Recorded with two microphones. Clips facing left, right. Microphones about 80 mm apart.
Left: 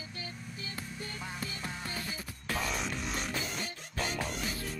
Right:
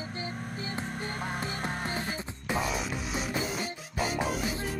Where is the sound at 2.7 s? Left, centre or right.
Centre.